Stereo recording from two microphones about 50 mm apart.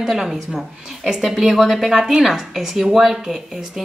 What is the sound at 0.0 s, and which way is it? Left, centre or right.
Speech, centre.